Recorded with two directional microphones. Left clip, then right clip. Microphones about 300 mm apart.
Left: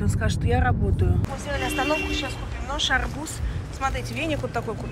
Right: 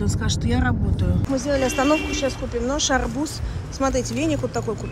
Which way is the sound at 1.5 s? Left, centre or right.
Right.